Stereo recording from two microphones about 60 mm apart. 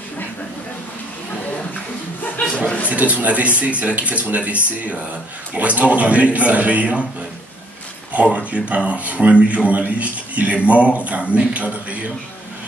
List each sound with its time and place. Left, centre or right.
2.9 s speech: right
8.1 s speech: right